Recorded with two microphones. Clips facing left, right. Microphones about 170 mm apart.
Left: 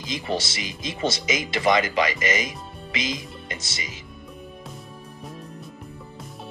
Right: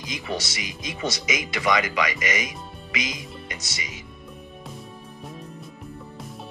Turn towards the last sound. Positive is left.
turn(degrees=0)  # may be behind; listen again after turning